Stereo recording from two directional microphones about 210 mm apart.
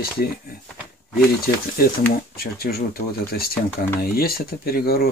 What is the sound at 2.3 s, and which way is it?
Speech, 45° left (ahead or behind).